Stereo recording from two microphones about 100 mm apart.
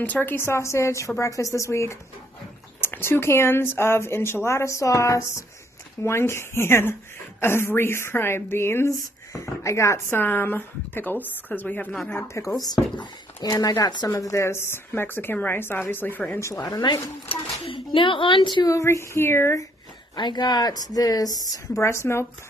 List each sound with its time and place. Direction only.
0.0 s speech: 20° left (ahead or behind)
12.4 s speech: 30° left (ahead or behind)
12.7 s a woman's voice: 45° left (ahead or behind)
14.1 s speech: 30° left (ahead or behind)
16.3 s a woman's voice: 30° left (ahead or behind)
17.3 s speech: 60° left (ahead or behind)
18.7 s speech: 30° left (ahead or behind)
20.2 s a woman's voice: 45° left (ahead or behind); by 22.2 s 25° left (ahead or behind)